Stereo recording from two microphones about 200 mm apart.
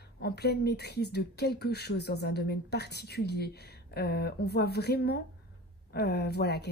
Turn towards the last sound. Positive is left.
turn(degrees=55)  # may be behind; listen again after turning